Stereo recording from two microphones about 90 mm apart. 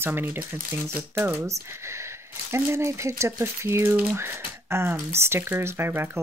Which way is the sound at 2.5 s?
30° right (ahead or behind).